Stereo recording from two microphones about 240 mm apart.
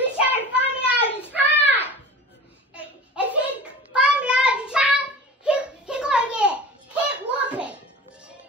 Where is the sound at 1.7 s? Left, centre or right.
Centre.